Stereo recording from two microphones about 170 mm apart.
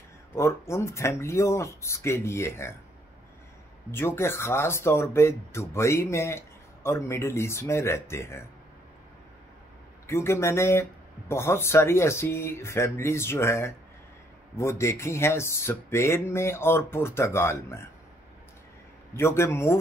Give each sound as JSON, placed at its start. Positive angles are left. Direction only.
{"t": 0.3, "sound": "speech", "side_deg": 15}
{"t": 3.9, "sound": "speech", "side_deg": 15}
{"t": 10.0, "sound": "speech", "side_deg": 15}
{"t": 19.1, "sound": "speech", "side_deg": 15}